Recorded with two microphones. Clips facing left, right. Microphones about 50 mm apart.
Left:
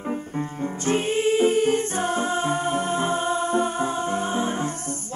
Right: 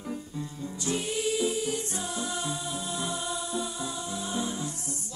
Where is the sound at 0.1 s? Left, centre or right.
Left.